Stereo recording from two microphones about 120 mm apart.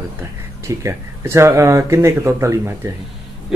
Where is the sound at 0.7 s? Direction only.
25° right (ahead or behind).